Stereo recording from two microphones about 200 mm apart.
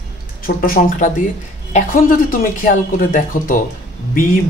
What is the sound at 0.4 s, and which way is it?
Speech, 45° left (ahead or behind).